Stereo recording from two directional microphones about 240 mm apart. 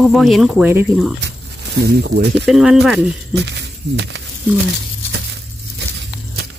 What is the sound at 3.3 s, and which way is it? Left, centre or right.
Speech, right.